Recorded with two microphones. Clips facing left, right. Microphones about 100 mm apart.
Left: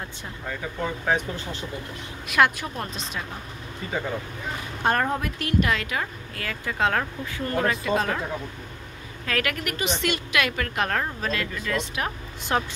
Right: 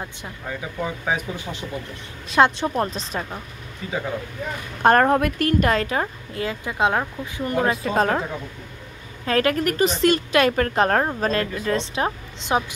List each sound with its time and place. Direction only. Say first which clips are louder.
0.5 s speech: right 1 dB; 10° right (ahead or behind)
2.2 s a woman's voice: right 4 dB; 30° right (ahead or behind)
3.8 s speech: right 2 dB; centre (ahead or behind)
4.8 s a woman's voice: right 8 dB; 55° right (ahead or behind); by 6.0 s 35° right (ahead or behind)
6.3 s speech: right 4 dB; 20° right (ahead or behind)
7.7 s a woman's voice: right 4 dB; 40° right (ahead or behind)
9.2 s a woman's voice: right 8 dB; 30° right (ahead or behind)